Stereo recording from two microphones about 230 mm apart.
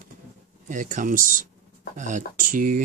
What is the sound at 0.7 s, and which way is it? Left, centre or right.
Speech, right.